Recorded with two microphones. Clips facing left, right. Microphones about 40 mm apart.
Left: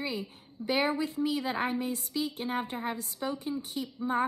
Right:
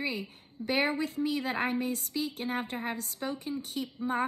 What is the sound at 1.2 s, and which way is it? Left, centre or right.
A woman's voice, right.